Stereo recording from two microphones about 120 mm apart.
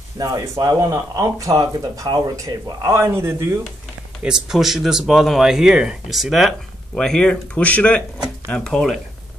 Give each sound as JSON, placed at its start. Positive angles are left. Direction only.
{"t": 0.2, "sound": "speech", "side_deg": -30}
{"t": 4.2, "sound": "speech", "side_deg": -5}